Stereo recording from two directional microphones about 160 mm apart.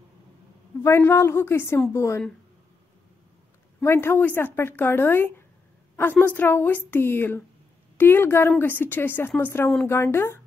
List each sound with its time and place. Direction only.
0.8 s a woman's voice: 15° left (ahead or behind)
3.8 s a woman's voice: 15° left (ahead or behind)